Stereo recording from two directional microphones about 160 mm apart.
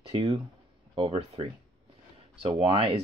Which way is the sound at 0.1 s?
35° right (ahead or behind).